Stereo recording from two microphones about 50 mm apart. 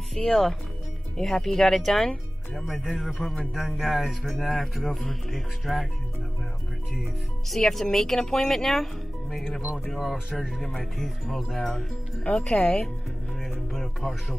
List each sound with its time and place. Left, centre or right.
0.1 s speech: centre
7.0 s speech: centre
10.8 s speech: centre
13.4 s music: centre